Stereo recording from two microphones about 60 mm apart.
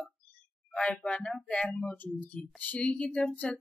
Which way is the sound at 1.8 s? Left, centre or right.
Left.